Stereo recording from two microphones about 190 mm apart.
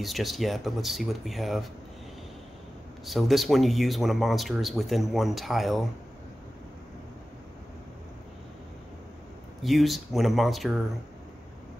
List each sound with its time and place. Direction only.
0.0 s speech: centre (ahead or behind)
3.1 s speech: centre (ahead or behind)
9.6 s speech: centre (ahead or behind)